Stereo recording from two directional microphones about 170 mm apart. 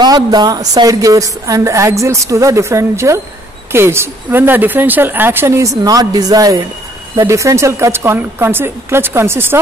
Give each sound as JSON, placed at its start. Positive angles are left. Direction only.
{"t": 0.0, "sound": "a woman's voice", "side_deg": -25}